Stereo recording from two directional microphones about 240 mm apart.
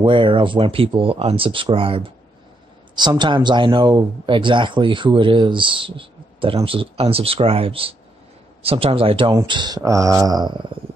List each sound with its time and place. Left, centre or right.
0.0 s speech: right